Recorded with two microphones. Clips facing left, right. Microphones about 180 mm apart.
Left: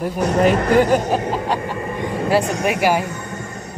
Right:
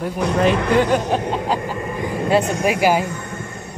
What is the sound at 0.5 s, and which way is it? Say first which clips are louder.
Speech: left 1 dB; 40° left (ahead or behind).